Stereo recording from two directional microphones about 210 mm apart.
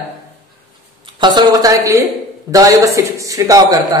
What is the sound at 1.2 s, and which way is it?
A man's voice, 20° right (ahead or behind).